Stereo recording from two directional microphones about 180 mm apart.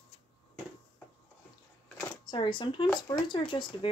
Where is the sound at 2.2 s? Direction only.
25° left (ahead or behind).